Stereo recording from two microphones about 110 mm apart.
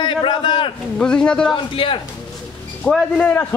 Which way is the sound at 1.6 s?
50° left (ahead or behind).